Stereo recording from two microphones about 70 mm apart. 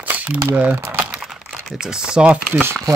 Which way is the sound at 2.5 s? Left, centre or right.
Right.